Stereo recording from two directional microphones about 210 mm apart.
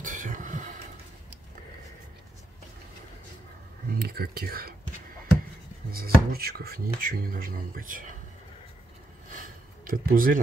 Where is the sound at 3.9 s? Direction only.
45° right (ahead or behind).